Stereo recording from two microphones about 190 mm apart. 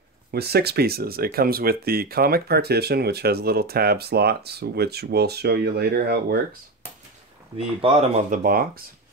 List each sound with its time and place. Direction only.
0.3 s speech: 55° right (ahead or behind)
7.5 s speech: 30° right (ahead or behind)
8.3 s speech: 50° right (ahead or behind)